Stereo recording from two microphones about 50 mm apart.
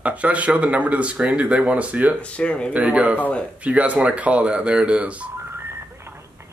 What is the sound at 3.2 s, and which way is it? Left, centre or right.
Speech, left.